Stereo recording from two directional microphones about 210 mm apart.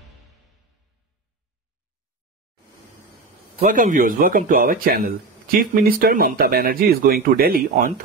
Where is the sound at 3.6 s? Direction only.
40° right (ahead or behind).